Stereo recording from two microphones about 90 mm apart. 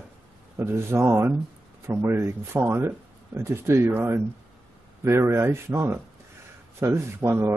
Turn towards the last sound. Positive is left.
turn(degrees=-25)  # may be behind; listen again after turning